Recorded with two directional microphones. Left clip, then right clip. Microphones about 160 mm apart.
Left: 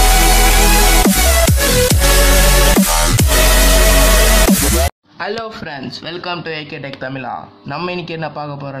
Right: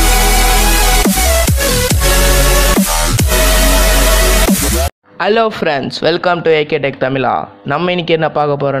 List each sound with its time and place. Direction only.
0.0 s music: centre (ahead or behind)
5.2 s a man's voice: 55° right (ahead or behind)
6.2 s speech: 35° right (ahead or behind)